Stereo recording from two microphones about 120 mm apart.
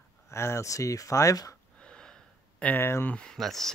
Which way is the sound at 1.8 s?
5° left (ahead or behind).